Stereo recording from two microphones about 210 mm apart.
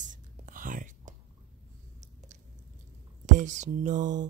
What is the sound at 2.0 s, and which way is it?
Chewing, 35° right (ahead or behind).